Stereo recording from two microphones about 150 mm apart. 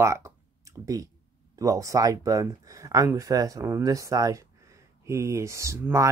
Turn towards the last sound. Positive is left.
turn(degrees=-20)  # may be behind; listen again after turning